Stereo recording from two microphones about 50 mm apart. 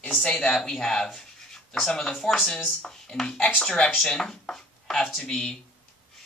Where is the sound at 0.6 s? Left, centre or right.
Centre.